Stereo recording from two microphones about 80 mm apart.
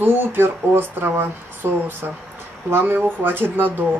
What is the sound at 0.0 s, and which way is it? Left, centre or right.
Speech, right.